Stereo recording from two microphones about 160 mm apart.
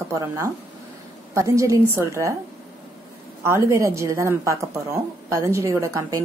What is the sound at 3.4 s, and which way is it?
A woman's voice, 15° right (ahead or behind).